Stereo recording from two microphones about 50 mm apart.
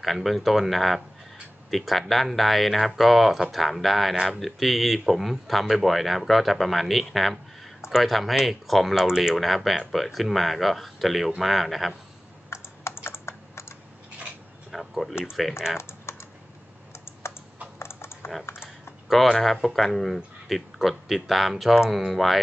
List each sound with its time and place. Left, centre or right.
0.0 s speech: centre
12.4 s computer keyboard: left
14.7 s a sound: centre
15.8 s typing: left
16.9 s computer keyboard: left
17.7 s typing: left
19.2 s speech: centre